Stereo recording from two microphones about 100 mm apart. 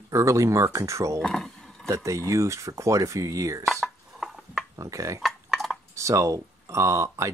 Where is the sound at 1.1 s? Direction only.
5° left (ahead or behind).